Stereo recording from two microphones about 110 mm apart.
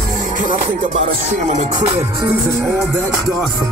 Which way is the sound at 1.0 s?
90° right.